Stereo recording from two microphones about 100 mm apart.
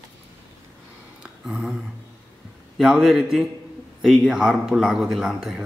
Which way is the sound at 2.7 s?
5° right (ahead or behind).